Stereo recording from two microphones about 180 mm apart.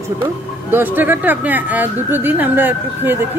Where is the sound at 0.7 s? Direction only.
10° right (ahead or behind).